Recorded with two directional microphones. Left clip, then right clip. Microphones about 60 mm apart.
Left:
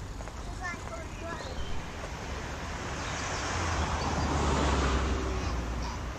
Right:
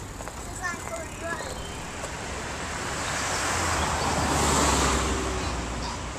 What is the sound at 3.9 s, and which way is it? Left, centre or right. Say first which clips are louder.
Vehicle: right 6 dB; right.